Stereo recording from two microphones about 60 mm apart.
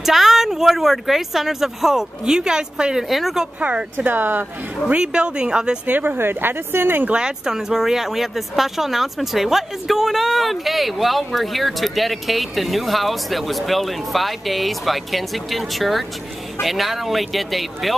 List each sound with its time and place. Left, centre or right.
0.0 s speech: centre
3.9 s speech: right
4.8 s speech: centre
5.9 s speech: right
7.1 s speech: centre